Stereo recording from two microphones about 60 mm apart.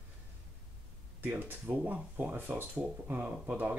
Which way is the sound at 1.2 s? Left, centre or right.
Right.